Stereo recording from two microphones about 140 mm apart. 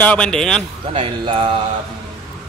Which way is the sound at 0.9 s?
40° right (ahead or behind).